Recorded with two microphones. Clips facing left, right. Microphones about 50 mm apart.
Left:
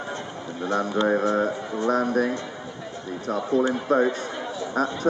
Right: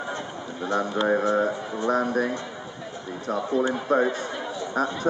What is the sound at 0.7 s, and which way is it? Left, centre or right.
Speech, centre.